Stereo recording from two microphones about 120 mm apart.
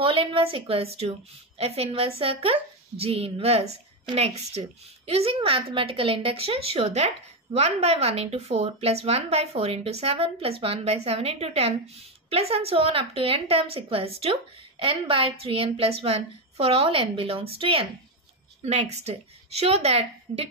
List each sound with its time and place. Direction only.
0.0 s a woman's voice: 50° right (ahead or behind)
18.6 s a woman's voice: 60° right (ahead or behind)